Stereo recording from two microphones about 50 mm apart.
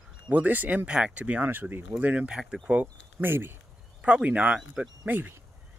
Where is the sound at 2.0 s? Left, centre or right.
Right.